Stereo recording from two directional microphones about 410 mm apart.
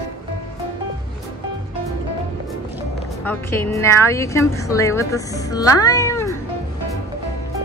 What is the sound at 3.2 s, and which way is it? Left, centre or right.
A woman's voice, centre.